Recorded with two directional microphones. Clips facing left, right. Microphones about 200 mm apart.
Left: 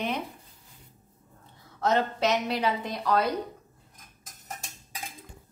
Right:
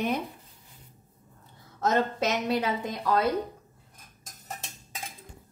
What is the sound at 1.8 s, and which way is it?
Speech, 45° right (ahead or behind).